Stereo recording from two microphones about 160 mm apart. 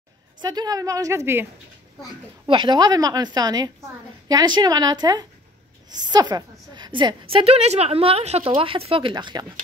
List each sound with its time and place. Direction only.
0.4 s a woman's voice: 25° right (ahead or behind)
2.4 s a woman's voice: 30° right (ahead or behind)